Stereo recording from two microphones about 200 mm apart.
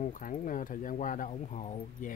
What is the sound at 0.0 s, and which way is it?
Speech, 40° left (ahead or behind).